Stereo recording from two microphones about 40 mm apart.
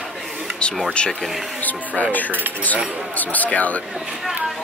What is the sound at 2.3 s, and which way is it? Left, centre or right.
Speech, right.